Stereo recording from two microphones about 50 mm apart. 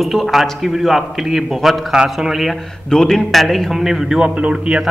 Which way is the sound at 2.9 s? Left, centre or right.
Centre.